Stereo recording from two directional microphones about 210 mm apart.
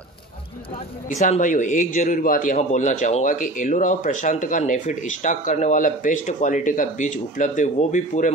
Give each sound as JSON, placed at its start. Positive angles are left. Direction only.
{"t": 1.0, "sound": "a man's voice", "side_deg": 35}